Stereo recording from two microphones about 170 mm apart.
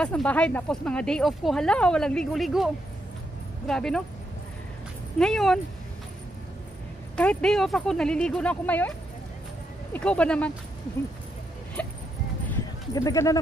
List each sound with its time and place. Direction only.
0.0 s speech: 5° left (ahead or behind)
5.2 s speech: centre (ahead or behind)
7.2 s speech: 5° left (ahead or behind)
9.9 s speech: 5° left (ahead or behind)
12.9 s speech: 20° left (ahead or behind)